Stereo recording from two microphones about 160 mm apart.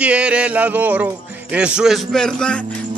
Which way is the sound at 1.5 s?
5° right (ahead or behind).